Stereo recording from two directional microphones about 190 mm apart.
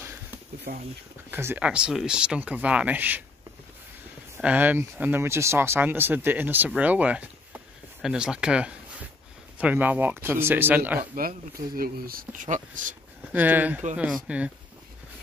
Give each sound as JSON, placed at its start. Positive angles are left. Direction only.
{"t": 0.7, "sound": "speech", "side_deg": -50}
{"t": 1.3, "sound": "speech", "side_deg": -10}
{"t": 4.4, "sound": "speech", "side_deg": -10}
{"t": 11.1, "sound": "speech", "side_deg": -50}
{"t": 13.3, "sound": "speech", "side_deg": -10}